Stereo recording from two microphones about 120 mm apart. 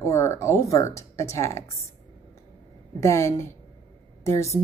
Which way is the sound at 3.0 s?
25° left (ahead or behind).